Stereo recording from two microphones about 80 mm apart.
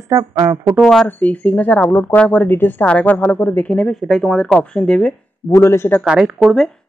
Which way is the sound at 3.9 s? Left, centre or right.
Centre.